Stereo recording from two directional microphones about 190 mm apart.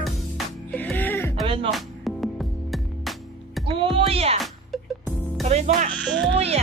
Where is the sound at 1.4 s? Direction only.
30° right (ahead or behind).